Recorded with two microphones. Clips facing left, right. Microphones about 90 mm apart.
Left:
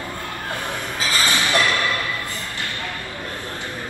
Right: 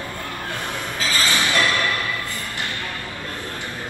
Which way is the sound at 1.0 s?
15° left (ahead or behind).